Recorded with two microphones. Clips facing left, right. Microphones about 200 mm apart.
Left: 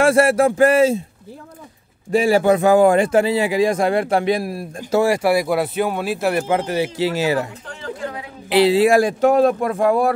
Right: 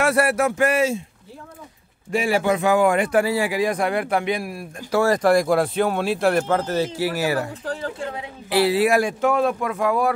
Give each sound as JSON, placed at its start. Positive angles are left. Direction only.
{"t": 0.0, "sound": "a man's voice", "side_deg": 25}
{"t": 2.0, "sound": "a man's voice", "side_deg": 35}
{"t": 4.9, "sound": "speech", "side_deg": 10}
{"t": 7.6, "sound": "speech", "side_deg": -30}
{"t": 8.5, "sound": "a man's voice", "side_deg": 20}